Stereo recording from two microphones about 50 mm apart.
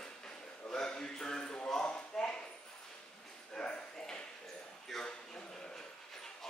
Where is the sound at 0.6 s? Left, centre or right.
Centre.